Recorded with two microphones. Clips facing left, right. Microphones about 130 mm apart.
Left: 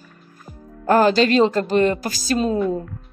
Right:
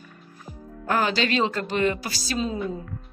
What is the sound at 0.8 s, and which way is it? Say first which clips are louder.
A woman's voice: left 9 dB; 40° left (ahead or behind).